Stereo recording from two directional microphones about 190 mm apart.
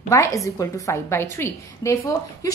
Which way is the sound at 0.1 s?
15° left (ahead or behind).